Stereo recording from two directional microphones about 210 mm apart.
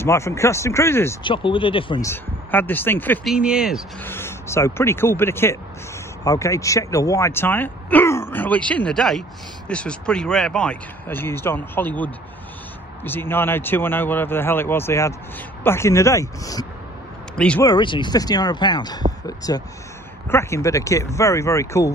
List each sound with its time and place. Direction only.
0.0 s speech: 10° left (ahead or behind)
1.2 s speech: 25° left (ahead or behind)
2.0 s speech: 10° left (ahead or behind)
3.3 s speech: 5° right (ahead or behind)
4.0 s speech: 10° left (ahead or behind)
17.4 s speech: 5° left (ahead or behind)
17.6 s speech: 20° left (ahead or behind)